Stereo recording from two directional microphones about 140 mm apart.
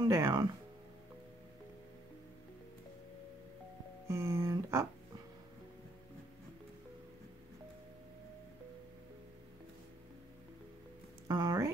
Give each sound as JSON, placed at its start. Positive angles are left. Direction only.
{"t": 0.0, "sound": "speech", "side_deg": -25}
{"t": 4.1, "sound": "speech", "side_deg": -20}
{"t": 11.2, "sound": "speech", "side_deg": -30}